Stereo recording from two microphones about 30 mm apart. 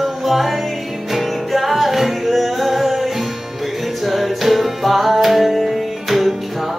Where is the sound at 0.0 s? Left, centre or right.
Centre.